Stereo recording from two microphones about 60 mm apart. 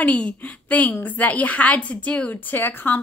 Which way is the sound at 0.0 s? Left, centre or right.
Left.